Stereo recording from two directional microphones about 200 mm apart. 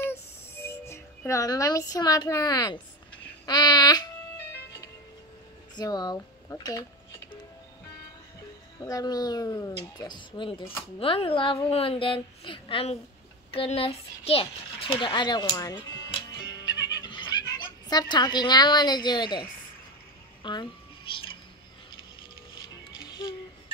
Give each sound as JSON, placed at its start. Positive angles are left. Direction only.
{"t": 0.0, "sound": "music", "side_deg": 15}
{"t": 3.4, "sound": "a sound", "side_deg": 20}
{"t": 5.8, "sound": "speech", "side_deg": 20}
{"t": 8.7, "sound": "speech", "side_deg": 20}
{"t": 16.7, "sound": "a sound", "side_deg": 20}
{"t": 20.4, "sound": "cat", "side_deg": 25}
{"t": 22.8, "sound": "music", "side_deg": 20}